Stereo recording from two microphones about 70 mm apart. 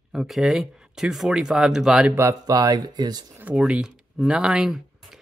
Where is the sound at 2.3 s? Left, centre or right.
Right.